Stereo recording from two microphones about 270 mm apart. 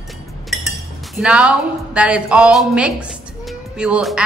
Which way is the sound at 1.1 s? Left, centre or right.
Centre.